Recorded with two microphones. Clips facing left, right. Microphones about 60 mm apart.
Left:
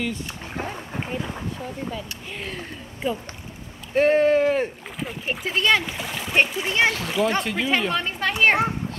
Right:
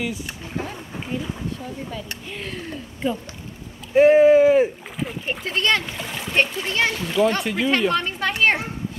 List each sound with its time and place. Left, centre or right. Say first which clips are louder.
1.0 s speech: right 4 dB; centre
2.3 s speech: right 2 dB; centre
6.9 s speech: right 2 dB; centre